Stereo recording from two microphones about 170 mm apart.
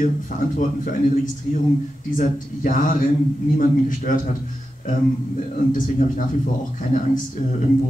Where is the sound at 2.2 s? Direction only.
50° left (ahead or behind).